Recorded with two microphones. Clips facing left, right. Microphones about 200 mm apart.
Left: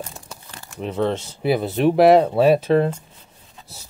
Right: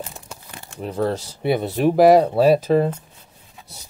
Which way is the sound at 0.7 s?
5° right (ahead or behind).